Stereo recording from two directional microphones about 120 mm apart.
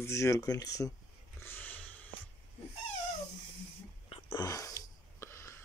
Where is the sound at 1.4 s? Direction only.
15° left (ahead or behind).